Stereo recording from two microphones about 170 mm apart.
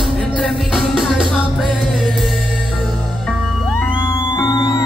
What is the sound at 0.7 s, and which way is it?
Music, centre (ahead or behind).